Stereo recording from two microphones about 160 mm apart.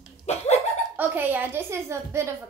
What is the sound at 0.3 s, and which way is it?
Speech, 40° left (ahead or behind).